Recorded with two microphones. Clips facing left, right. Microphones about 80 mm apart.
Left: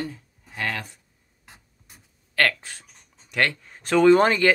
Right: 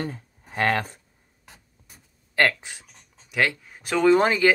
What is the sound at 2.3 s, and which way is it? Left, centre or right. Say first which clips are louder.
Speech: right 1 dB; centre.